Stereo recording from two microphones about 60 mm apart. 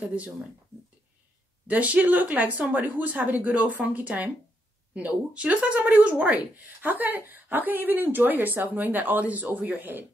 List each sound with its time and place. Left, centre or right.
1.7 s speech: right